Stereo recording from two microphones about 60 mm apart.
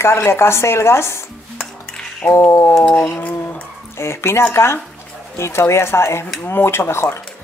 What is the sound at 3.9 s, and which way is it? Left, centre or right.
Speech, left.